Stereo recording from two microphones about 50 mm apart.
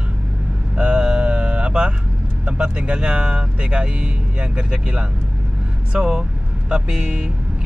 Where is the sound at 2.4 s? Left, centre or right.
Right.